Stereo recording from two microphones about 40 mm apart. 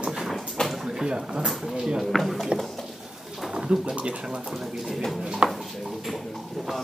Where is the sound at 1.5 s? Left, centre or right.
Centre.